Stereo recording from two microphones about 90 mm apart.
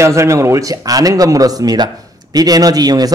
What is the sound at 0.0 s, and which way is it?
A man's voice, 35° right (ahead or behind).